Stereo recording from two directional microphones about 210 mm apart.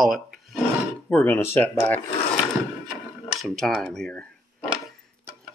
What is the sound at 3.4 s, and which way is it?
Speech, centre (ahead or behind).